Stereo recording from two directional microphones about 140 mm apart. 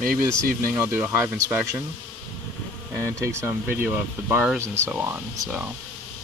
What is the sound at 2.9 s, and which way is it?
Speech, 20° right (ahead or behind).